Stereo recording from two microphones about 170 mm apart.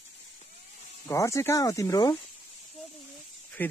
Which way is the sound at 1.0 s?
15° left (ahead or behind).